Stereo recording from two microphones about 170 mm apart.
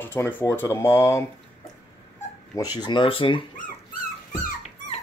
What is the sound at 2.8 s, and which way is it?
Speech, 25° left (ahead or behind).